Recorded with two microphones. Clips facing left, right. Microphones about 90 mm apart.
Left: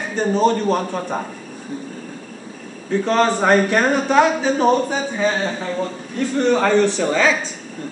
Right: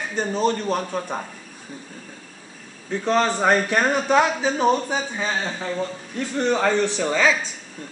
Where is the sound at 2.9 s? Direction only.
5° right (ahead or behind).